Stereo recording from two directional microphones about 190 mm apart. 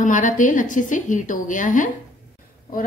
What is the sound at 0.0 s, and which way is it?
A woman's voice, 40° left (ahead or behind).